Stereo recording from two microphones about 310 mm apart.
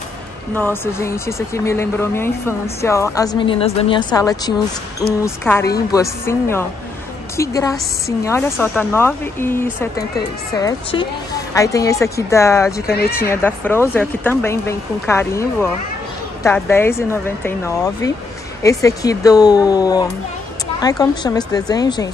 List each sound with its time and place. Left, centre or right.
0.6 s speech: centre